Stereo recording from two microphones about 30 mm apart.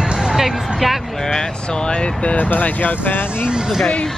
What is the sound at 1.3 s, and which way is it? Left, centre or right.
Speech, left.